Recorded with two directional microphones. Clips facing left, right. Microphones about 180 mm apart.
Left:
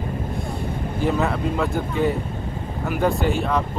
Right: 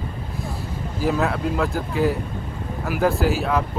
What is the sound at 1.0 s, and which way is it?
Speech, centre (ahead or behind).